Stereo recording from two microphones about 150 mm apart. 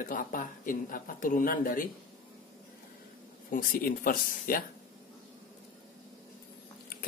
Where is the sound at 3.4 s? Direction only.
70° left (ahead or behind).